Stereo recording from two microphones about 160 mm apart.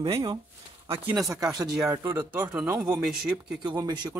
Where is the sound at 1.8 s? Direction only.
20° right (ahead or behind).